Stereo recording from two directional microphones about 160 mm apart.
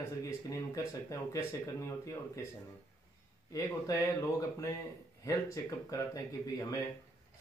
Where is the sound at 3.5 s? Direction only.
20° left (ahead or behind).